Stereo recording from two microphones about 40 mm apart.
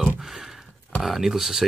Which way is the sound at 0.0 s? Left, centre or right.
Centre.